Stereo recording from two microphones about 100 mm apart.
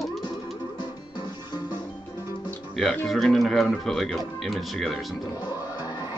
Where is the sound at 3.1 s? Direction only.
Centre (ahead or behind).